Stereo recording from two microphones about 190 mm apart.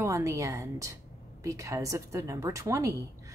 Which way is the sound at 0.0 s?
15° right (ahead or behind).